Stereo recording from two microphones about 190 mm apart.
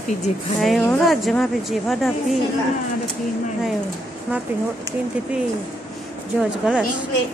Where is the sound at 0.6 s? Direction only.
5° left (ahead or behind).